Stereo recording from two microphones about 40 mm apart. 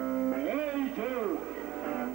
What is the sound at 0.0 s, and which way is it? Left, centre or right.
Music, centre.